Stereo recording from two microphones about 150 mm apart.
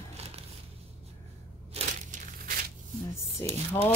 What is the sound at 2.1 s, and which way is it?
Crushing, 55° right (ahead or behind).